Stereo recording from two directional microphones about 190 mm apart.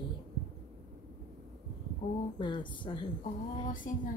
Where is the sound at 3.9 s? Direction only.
45° left (ahead or behind).